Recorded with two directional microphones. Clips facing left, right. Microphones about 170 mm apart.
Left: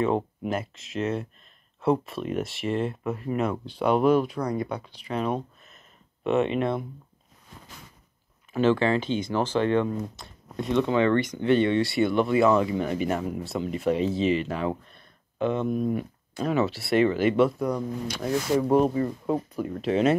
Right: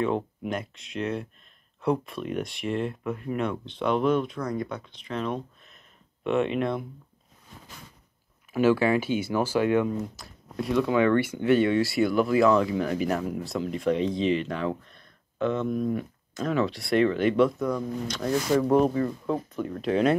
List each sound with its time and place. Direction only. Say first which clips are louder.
0.5 s speech: left 2 dB; 5° left (ahead or behind)
8.5 s speech: even; 10° right (ahead or behind)
14.9 s a sound: left 1 dB; 15° left (ahead or behind)
16.4 s speech: left 1 dB; 5° left (ahead or behind)
17.6 s speech: even; 35° left (ahead or behind)
18.0 s speech: right 1 dB; 10° left (ahead or behind)